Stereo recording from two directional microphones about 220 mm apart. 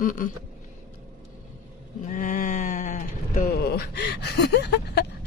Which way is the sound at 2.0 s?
35° left (ahead or behind).